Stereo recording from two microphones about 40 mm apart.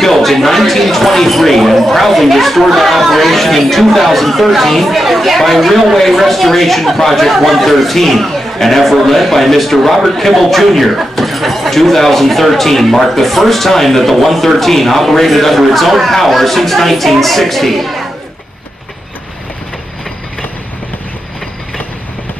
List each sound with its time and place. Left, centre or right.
0.0 s speech: centre